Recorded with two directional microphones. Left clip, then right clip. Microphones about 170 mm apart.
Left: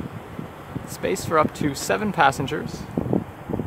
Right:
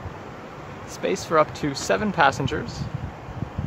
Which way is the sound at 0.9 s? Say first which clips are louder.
Even; 5° left (ahead or behind).